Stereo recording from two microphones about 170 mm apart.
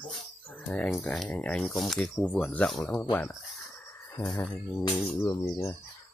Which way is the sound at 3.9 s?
20° left (ahead or behind).